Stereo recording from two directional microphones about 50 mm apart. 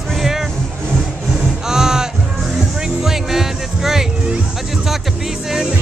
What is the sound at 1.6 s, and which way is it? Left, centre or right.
Music, centre.